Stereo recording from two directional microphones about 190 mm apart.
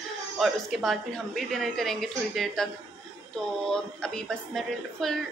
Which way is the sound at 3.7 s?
5° left (ahead or behind).